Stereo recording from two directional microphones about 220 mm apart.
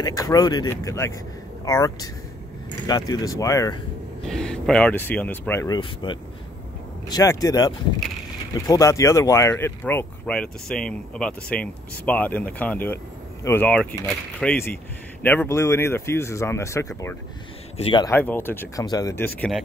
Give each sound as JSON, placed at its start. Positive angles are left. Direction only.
{"t": 0.0, "sound": "speech", "side_deg": 15}
{"t": 4.3, "sound": "speech", "side_deg": 0}
{"t": 17.7, "sound": "speech", "side_deg": 25}